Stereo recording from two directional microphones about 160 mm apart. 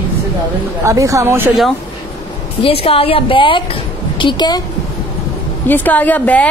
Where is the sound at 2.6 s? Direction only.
35° left (ahead or behind).